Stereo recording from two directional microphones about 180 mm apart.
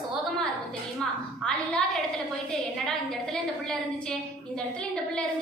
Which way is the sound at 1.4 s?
5° left (ahead or behind).